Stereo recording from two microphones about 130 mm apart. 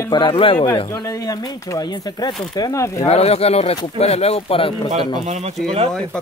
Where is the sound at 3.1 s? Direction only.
55° left (ahead or behind).